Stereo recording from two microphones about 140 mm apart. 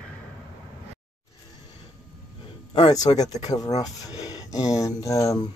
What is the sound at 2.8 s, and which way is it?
Speech, 25° left (ahead or behind).